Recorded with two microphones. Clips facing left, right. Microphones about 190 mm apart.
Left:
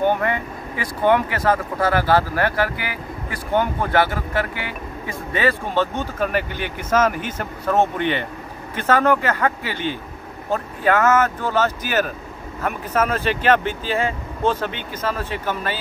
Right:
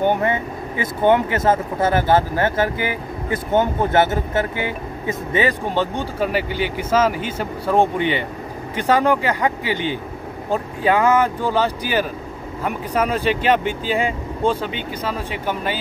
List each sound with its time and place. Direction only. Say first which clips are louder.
0.2 s speech: right 2 dB; 20° right (ahead or behind)